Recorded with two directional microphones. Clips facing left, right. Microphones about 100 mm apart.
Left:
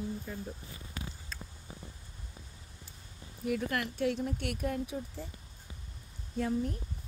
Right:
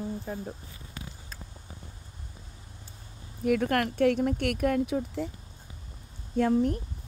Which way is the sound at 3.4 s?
60° right (ahead or behind).